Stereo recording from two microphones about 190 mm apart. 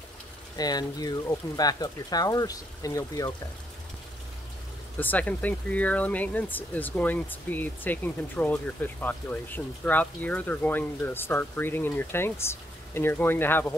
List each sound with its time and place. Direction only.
0.6 s speech: 20° left (ahead or behind)
4.9 s speech: 10° left (ahead or behind)